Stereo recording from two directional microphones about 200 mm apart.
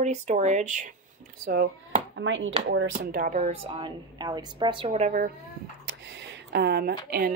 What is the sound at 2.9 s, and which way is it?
A woman's voice, 45° right (ahead or behind).